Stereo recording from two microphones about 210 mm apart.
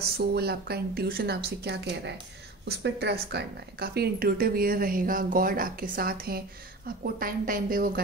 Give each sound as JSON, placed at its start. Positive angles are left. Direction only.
{"t": 0.2, "sound": "speech", "side_deg": -50}